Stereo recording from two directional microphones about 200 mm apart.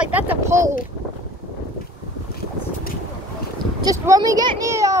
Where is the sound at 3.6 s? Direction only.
20° right (ahead or behind).